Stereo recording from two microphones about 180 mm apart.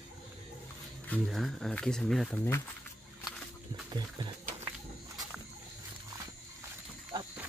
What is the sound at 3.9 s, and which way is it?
Speech, 25° right (ahead or behind).